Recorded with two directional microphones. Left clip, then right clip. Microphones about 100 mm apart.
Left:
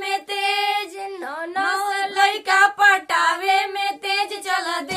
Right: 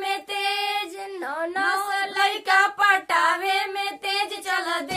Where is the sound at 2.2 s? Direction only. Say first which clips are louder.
Left 4 dB; 35° left (ahead or behind).